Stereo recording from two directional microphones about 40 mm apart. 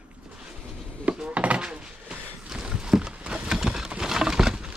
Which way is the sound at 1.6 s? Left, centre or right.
Right.